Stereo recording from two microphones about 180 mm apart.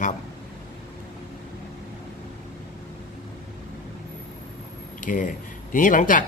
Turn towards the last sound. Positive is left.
turn(degrees=45)  # may be behind; listen again after turning